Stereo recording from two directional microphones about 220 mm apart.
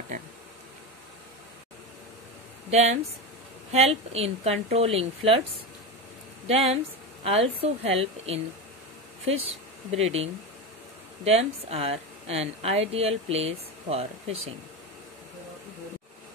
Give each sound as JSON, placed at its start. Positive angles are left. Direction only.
{"t": 2.7, "sound": "speech", "side_deg": -30}
{"t": 6.4, "sound": "speech", "side_deg": -25}
{"t": 9.8, "sound": "speech", "side_deg": -30}
{"t": 11.2, "sound": "speech", "side_deg": -30}